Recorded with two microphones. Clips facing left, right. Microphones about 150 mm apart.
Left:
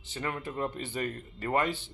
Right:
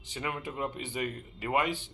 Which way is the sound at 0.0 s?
15° right (ahead or behind).